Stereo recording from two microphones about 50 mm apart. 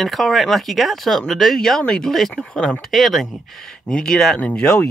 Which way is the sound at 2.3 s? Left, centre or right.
Centre.